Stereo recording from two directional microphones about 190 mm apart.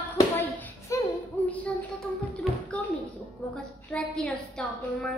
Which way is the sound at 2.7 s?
10° left (ahead or behind).